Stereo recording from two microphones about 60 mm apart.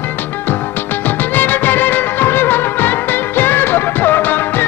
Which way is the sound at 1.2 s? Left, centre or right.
Left.